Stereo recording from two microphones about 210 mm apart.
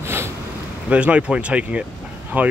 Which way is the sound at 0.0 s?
10° right (ahead or behind).